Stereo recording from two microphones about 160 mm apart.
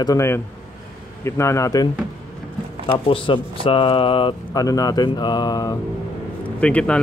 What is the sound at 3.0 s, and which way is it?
Speech, 35° left (ahead or behind).